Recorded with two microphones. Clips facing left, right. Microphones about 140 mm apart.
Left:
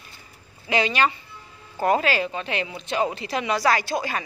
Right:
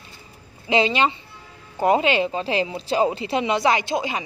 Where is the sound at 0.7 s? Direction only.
25° right (ahead or behind).